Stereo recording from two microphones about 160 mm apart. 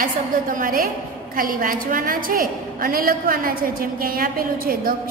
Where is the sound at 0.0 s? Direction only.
55° right (ahead or behind).